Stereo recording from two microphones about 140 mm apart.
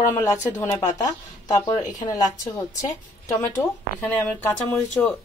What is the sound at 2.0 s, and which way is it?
A woman's voice, 25° left (ahead or behind).